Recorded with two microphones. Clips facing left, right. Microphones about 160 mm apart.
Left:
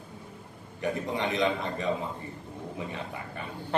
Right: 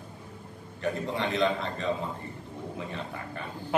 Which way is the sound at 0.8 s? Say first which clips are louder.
Even; 15° left (ahead or behind).